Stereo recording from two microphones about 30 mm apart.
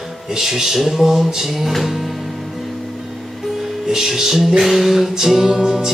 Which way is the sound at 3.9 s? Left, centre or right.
Centre.